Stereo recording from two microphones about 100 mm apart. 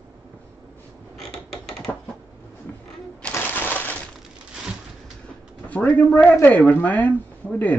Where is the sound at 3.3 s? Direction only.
20° left (ahead or behind).